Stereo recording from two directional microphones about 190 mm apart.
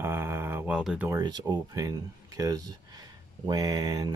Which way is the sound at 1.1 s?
20° right (ahead or behind).